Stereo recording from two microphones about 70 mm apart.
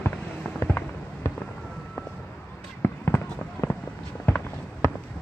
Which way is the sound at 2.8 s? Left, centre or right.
Left.